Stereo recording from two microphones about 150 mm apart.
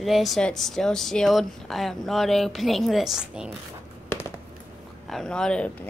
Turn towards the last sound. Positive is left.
turn(degrees=5)  # may be behind; listen again after turning